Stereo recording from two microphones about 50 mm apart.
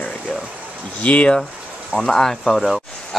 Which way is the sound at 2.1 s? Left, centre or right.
Centre.